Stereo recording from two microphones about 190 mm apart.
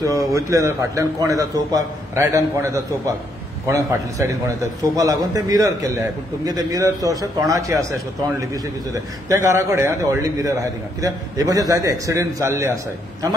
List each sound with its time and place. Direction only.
0.0 s a man's voice: 20° right (ahead or behind)